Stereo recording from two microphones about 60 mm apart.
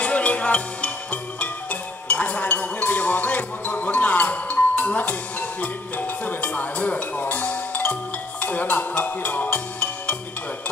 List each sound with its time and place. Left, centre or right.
0.0 s music: left